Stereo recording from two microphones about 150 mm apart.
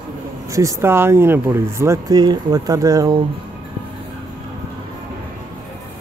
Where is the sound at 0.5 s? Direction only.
20° right (ahead or behind).